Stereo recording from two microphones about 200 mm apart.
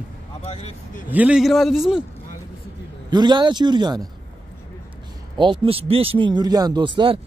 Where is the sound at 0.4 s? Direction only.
35° left (ahead or behind).